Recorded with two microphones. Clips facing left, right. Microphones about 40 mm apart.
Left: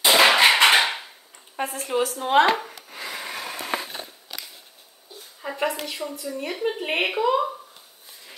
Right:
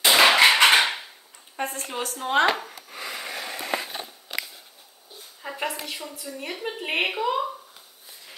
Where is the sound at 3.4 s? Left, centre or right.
Centre.